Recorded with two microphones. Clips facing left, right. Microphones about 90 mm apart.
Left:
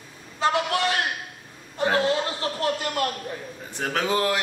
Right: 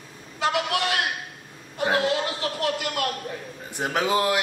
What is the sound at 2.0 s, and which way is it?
Speech, 30° left (ahead or behind).